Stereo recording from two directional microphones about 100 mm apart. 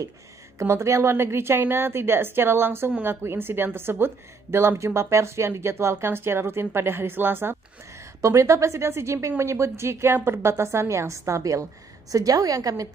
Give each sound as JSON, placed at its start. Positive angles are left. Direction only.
{"t": 0.6, "sound": "a woman's voice", "side_deg": -30}